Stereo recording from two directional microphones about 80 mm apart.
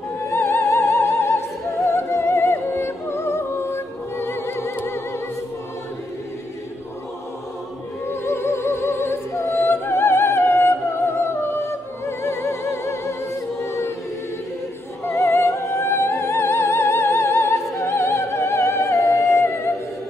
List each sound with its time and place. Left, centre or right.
0.3 s opera: left
1.9 s music: left
8.1 s music: left
15.0 s opera: left